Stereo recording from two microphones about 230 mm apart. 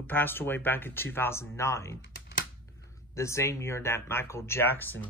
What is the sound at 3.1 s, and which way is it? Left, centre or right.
Speech, centre.